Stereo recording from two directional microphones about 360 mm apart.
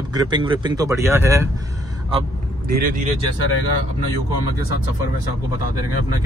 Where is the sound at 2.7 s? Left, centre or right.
Right.